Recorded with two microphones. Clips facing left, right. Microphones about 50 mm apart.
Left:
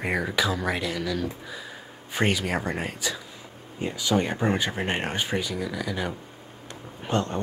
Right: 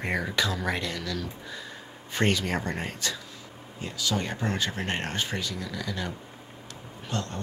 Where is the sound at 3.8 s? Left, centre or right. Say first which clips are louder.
Left 6 dB; left.